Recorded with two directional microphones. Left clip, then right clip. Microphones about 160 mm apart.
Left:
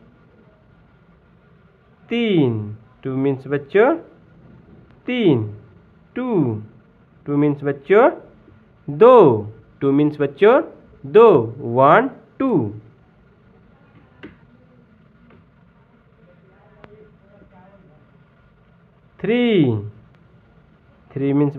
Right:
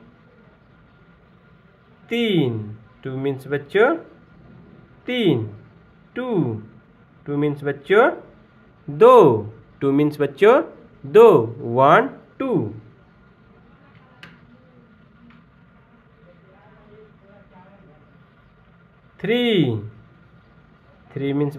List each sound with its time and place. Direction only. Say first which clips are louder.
2.0 s speech: left 2 dB; 15° left (ahead or behind)
5.0 s speech: left 2 dB; 15° left (ahead or behind)
8.9 s speech: left 1 dB; 5° left (ahead or behind)
12.4 s speech: left 3 dB; 15° left (ahead or behind)
19.1 s speech: left 2 dB; 15° left (ahead or behind)
21.1 s speech: left 4 dB; 15° left (ahead or behind)